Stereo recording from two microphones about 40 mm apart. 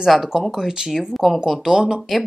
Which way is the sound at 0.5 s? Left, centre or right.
Centre.